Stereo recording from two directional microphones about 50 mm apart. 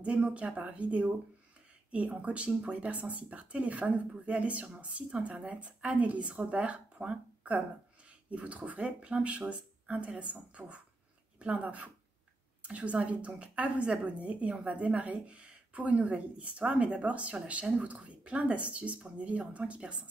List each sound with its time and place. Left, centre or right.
0.0 s a woman's voice: right